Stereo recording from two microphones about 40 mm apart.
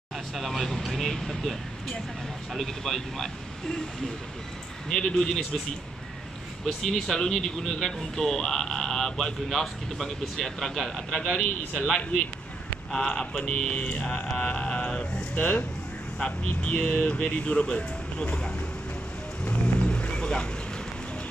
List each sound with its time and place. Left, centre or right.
0.4 s speech: centre
4.8 s speech: centre
6.6 s speech: centre
11.3 s speech: left
12.9 s speech: left
14.4 s a sound: left
15.3 s speech: left
16.2 s speech: left
19.4 s vehicle: left